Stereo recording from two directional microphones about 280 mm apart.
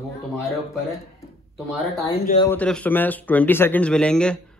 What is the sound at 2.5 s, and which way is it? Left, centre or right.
A man's voice, centre.